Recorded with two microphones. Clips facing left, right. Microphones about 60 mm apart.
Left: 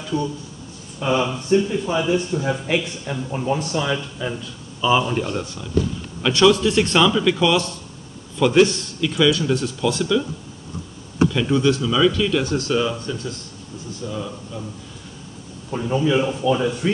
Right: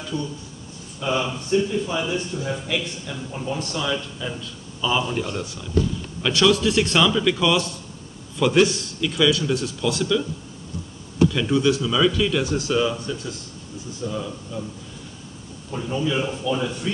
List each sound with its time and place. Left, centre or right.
1.0 s speech: left
3.7 s speech: left
5.4 s speech: centre
11.2 s speech: centre
15.7 s speech: left